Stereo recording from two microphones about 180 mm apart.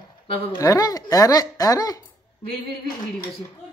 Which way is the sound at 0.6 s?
20° left (ahead or behind).